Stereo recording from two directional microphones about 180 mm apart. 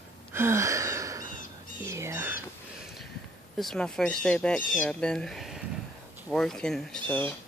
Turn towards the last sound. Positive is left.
turn(degrees=5)  # may be behind; listen again after turning